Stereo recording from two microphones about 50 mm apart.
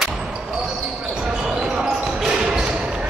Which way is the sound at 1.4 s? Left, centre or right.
Centre.